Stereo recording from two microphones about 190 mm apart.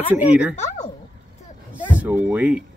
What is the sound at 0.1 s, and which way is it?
Speech, 5° right (ahead or behind).